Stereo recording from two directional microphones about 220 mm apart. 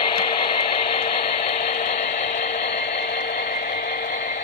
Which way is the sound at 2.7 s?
50° left (ahead or behind).